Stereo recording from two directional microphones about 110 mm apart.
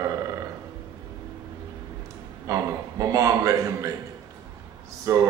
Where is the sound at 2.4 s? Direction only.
30° right (ahead or behind).